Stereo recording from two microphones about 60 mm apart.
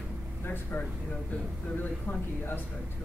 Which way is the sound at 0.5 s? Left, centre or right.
Left.